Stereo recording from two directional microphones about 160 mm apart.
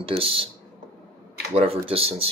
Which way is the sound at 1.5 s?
35° right (ahead or behind).